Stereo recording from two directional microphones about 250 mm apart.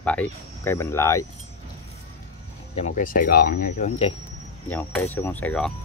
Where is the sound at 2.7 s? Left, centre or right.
Left.